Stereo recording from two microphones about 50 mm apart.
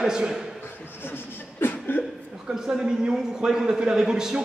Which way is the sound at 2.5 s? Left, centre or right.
Centre.